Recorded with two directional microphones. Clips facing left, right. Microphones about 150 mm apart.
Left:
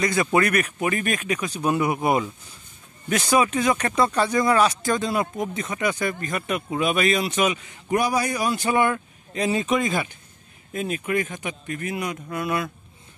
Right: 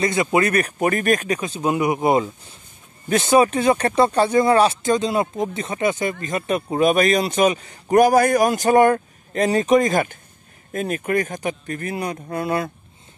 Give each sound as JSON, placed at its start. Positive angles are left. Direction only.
{"t": 0.0, "sound": "speech", "side_deg": -20}
{"t": 0.6, "sound": "speech", "side_deg": -40}
{"t": 1.4, "sound": "speech", "side_deg": -25}